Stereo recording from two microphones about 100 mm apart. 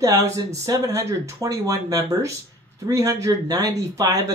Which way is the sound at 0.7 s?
30° right (ahead or behind).